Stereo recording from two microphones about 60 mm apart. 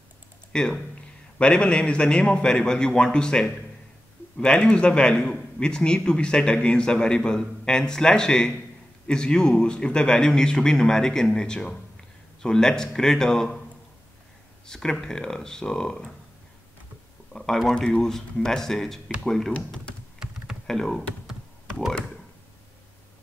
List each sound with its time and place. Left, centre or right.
0.5 s a man's voice: centre
14.7 s a man's voice: centre
17.3 s a man's voice: centre
20.6 s speech: centre